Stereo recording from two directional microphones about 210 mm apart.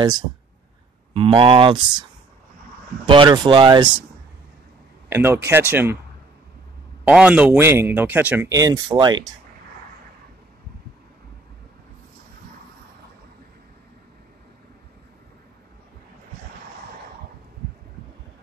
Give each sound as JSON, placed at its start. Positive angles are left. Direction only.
{"t": 1.1, "sound": "speech", "side_deg": -25}
{"t": 3.1, "sound": "speech", "side_deg": -25}
{"t": 5.1, "sound": "speech", "side_deg": -10}
{"t": 7.1, "sound": "speech", "side_deg": -5}